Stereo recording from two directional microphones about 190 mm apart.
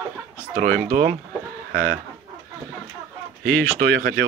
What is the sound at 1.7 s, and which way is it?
Speech, 50° right (ahead or behind).